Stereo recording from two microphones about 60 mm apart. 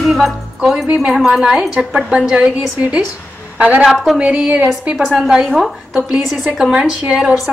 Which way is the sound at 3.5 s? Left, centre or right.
Right.